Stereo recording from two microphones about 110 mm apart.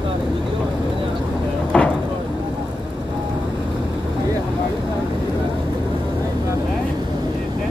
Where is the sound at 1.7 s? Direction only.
10° left (ahead or behind).